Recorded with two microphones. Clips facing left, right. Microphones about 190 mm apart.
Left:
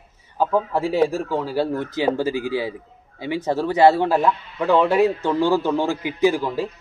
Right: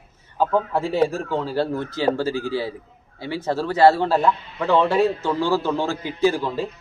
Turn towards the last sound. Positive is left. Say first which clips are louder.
# left 1 dB
turn(degrees=10)  # may be behind; listen again after turning